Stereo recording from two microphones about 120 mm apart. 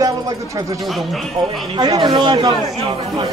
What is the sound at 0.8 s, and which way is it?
Speech, centre (ahead or behind).